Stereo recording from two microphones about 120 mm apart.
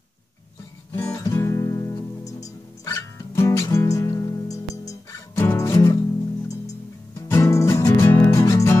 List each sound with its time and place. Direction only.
0.9 s music: 25° left (ahead or behind)
7.2 s music: 25° left (ahead or behind)